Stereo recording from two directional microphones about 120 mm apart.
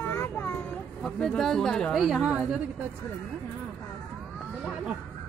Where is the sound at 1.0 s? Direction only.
5° left (ahead or behind).